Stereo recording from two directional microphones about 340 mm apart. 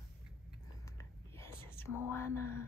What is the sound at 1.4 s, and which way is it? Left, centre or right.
Whispering, centre.